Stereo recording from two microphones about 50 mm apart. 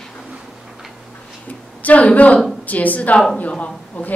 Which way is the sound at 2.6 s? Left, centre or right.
Left.